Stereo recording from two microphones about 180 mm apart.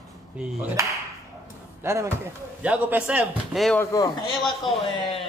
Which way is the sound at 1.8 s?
15° right (ahead or behind).